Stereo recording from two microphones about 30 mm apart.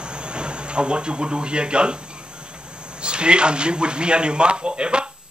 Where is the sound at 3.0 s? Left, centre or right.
Right.